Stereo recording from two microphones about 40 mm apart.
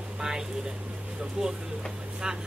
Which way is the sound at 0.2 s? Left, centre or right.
Centre.